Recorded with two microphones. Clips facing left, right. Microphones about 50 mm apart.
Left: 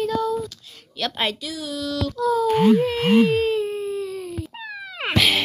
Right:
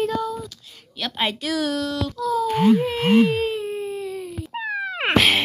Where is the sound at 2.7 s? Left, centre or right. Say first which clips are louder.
Even; centre.